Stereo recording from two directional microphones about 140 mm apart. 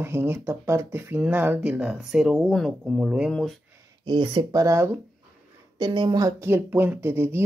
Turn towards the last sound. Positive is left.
turn(degrees=-15)  # may be behind; listen again after turning